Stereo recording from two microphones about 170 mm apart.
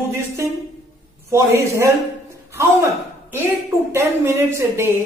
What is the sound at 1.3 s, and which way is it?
Speech, 15° right (ahead or behind).